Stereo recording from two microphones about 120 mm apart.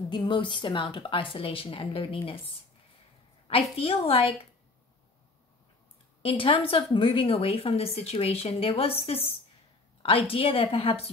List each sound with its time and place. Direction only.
0.1 s a woman's voice: 40° left (ahead or behind)
3.7 s a woman's voice: 50° left (ahead or behind)
6.2 s a woman's voice: 45° left (ahead or behind)